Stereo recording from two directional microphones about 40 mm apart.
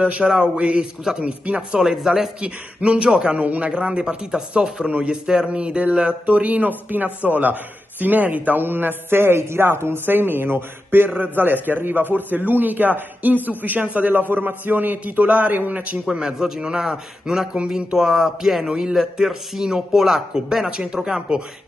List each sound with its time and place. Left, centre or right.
0.0 s speech: right
1.8 s speech: centre
2.4 s speech: right
3.3 s speech: right
3.7 s speech: right
4.8 s speech: right
5.2 s a man's voice: right
8.6 s a man's voice: right
11.1 s a man's voice: right
16.1 s speech: centre